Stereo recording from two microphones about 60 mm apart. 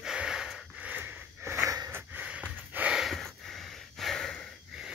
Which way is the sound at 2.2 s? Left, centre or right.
Right.